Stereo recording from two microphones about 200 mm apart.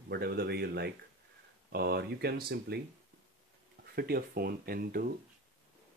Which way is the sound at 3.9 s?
50° right (ahead or behind).